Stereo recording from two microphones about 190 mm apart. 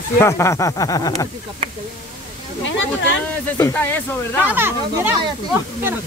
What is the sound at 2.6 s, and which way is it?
Speech, 75° left (ahead or behind).